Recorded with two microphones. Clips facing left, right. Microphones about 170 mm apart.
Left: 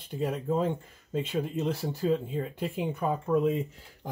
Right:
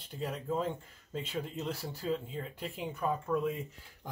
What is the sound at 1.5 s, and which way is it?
Speech, 20° left (ahead or behind).